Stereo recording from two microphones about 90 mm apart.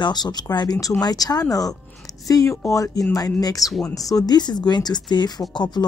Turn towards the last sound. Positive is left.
turn(degrees=55)  # may be behind; listen again after turning